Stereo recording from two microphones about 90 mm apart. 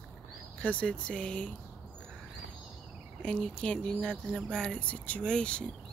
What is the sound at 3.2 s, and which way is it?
Speech, 15° left (ahead or behind).